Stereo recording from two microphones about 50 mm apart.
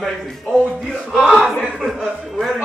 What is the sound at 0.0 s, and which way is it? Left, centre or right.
Speech, centre.